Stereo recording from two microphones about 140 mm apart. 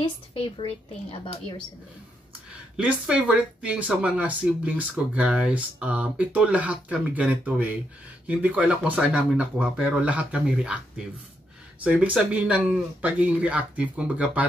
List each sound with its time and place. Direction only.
0.0 s a woman's voice: 40° left (ahead or behind)
2.8 s speech: 10° right (ahead or behind)
11.8 s speech: 10° right (ahead or behind)